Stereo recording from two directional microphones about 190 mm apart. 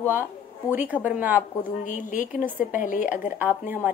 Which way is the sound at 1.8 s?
45° left (ahead or behind).